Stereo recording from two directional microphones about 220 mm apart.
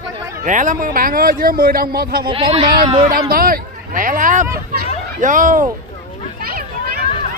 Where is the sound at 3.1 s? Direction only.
40° right (ahead or behind).